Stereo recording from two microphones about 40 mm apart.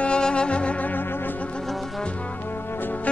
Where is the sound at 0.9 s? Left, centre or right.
Left.